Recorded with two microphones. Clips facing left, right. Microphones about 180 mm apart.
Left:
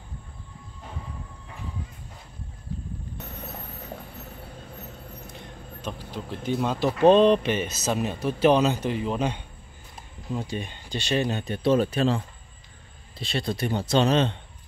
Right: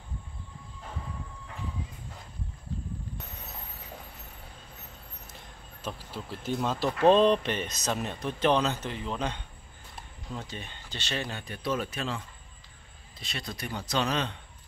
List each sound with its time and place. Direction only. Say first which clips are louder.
5.8 s speech: left 3 dB; 5° right (ahead or behind); by 12.2 s 30° left (ahead or behind)
13.2 s speech: left 10 dB; 30° left (ahead or behind)